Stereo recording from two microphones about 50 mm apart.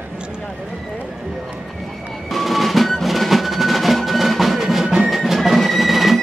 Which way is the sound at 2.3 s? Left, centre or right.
Centre.